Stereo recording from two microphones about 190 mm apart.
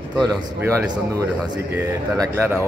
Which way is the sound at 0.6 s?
10° right (ahead or behind).